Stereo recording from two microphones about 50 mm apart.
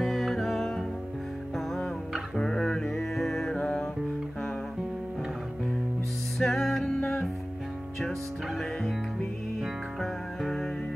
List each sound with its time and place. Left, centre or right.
0.0 s music: centre
2.3 s music: centre
3.5 s music: left
6.4 s music: centre
10.4 s music: centre